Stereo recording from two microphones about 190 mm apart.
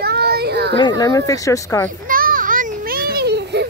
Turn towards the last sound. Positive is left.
turn(degrees=-60)  # may be behind; listen again after turning